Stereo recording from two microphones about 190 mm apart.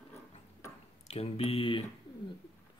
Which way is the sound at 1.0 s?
30° left (ahead or behind).